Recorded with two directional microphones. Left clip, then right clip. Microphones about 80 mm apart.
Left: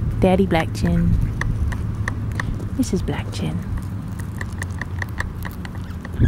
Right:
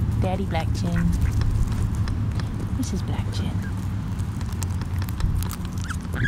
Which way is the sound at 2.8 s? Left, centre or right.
Left.